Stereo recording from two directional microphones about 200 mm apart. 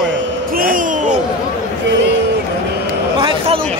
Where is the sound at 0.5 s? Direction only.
45° right (ahead or behind).